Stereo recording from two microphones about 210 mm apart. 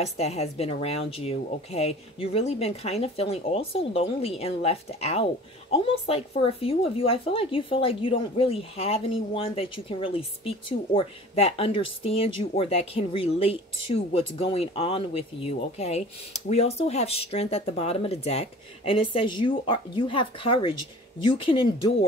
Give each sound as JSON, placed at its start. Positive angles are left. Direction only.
{"t": 0.0, "sound": "speech", "side_deg": 30}